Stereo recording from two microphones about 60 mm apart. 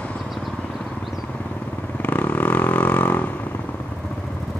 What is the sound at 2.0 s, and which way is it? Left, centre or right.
Vehicle, left.